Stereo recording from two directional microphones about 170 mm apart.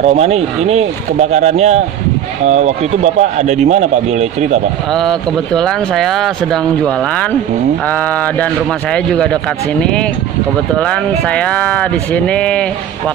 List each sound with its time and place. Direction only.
0.0 s speech: 40° right (ahead or behind)
4.9 s speech: 5° left (ahead or behind)